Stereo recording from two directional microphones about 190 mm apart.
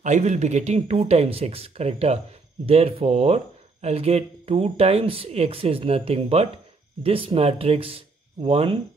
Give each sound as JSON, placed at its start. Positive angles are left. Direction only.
{"t": 0.0, "sound": "speech", "side_deg": -40}